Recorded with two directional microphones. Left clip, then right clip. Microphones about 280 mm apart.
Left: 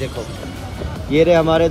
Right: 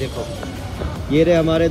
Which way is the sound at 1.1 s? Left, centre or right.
Centre.